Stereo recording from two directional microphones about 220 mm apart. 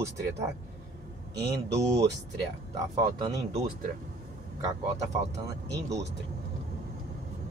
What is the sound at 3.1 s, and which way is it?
Speech, 15° right (ahead or behind).